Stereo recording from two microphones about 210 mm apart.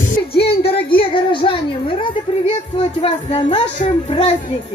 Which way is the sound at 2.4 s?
30° left (ahead or behind).